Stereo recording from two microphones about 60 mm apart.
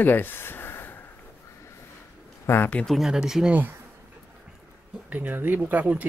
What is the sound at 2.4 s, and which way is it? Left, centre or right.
Speech, left.